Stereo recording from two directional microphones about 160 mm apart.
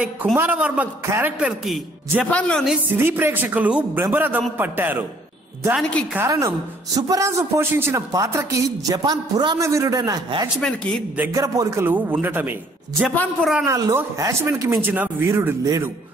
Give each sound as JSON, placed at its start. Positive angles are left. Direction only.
{"t": 0.0, "sound": "a man's voice", "side_deg": -10}
{"t": 2.2, "sound": "a woman's voice", "side_deg": 5}
{"t": 2.9, "sound": "a man's voice", "side_deg": -15}
{"t": 6.1, "sound": "a man's voice", "side_deg": -15}
{"t": 13.1, "sound": "a woman's voice", "side_deg": 10}
{"t": 13.7, "sound": "a man's voice", "side_deg": -20}